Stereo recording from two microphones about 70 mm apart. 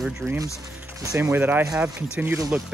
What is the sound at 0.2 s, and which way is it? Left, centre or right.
Speech, right.